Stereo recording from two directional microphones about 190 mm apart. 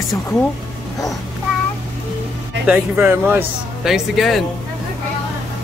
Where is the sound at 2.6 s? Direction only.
10° right (ahead or behind).